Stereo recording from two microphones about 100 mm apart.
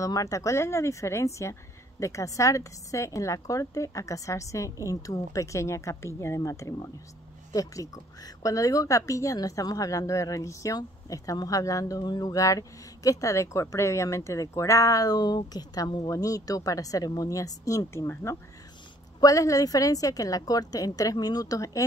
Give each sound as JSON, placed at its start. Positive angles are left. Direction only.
{"t": 0.0, "sound": "speech", "side_deg": 35}
{"t": 19.1, "sound": "speech", "side_deg": 35}